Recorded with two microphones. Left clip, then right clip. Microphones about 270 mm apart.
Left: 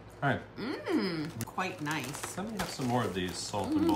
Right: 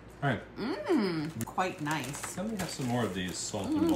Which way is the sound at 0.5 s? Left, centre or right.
Centre.